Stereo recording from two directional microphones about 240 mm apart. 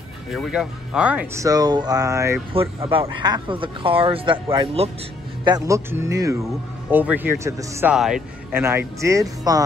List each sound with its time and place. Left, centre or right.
0.3 s speech: centre
2.5 s speech: right